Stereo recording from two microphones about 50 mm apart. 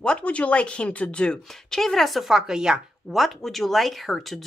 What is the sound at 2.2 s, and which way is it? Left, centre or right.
Speech, centre.